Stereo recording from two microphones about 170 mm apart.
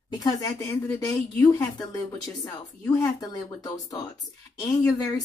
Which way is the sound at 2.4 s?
20° left (ahead or behind).